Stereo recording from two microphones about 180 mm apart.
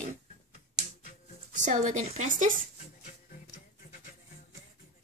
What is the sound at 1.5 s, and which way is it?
Speech, 45° right (ahead or behind).